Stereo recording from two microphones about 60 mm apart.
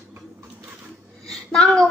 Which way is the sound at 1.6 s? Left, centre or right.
Centre.